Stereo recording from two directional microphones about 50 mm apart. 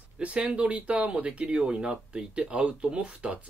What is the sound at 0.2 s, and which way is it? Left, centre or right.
Speech, right.